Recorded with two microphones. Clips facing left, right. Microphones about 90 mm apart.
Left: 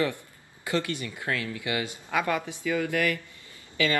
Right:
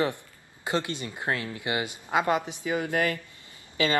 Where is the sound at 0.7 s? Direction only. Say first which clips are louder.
Even; 20° right (ahead or behind).